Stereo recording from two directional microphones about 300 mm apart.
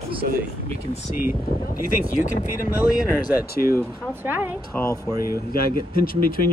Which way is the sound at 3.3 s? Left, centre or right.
Left.